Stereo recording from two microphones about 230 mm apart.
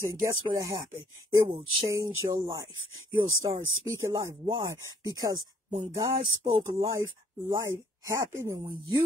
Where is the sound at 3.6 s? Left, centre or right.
Right.